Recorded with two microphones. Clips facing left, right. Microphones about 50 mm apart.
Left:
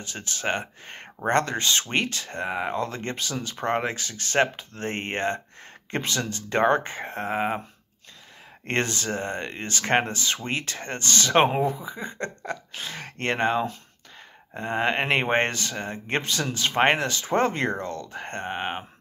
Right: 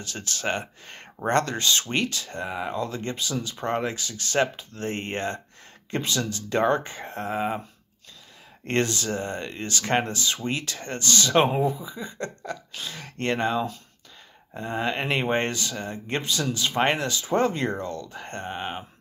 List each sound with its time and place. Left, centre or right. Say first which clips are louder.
0.0 s speech: even; left
8.6 s speech: right 1 dB; left